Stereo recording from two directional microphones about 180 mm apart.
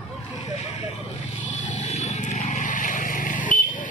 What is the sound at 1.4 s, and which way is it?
Vehicle, 40° left (ahead or behind).